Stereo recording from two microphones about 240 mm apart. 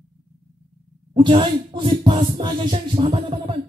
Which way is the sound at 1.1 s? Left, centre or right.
Right.